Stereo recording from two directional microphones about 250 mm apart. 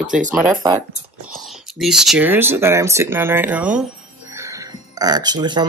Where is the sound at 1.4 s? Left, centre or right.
Centre.